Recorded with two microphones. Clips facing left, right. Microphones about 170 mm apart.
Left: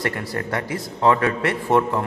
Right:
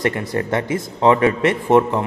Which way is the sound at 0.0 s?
20° right (ahead or behind).